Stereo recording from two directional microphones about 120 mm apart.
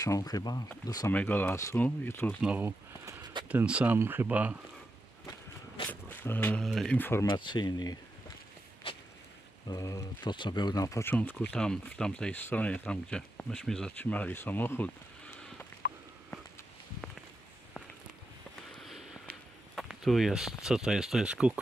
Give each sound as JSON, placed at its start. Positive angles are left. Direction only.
{"t": 0.0, "sound": "speech", "side_deg": 30}
{"t": 1.1, "sound": "speech", "side_deg": 15}
{"t": 2.4, "sound": "speech", "side_deg": -10}
{"t": 3.1, "sound": "a sound", "side_deg": -35}
{"t": 3.4, "sound": "speech", "side_deg": -10}
{"t": 5.9, "sound": "speech", "side_deg": 15}
{"t": 6.6, "sound": "speech", "side_deg": 0}
{"t": 7.0, "sound": "speech", "side_deg": 20}
{"t": 7.2, "sound": "speech", "side_deg": 40}
{"t": 9.7, "sound": "speech", "side_deg": 30}
{"t": 10.3, "sound": "speech", "side_deg": 40}
{"t": 11.1, "sound": "speech", "side_deg": 10}
{"t": 18.8, "sound": "a sound", "side_deg": 0}
{"t": 20.6, "sound": "speech", "side_deg": -5}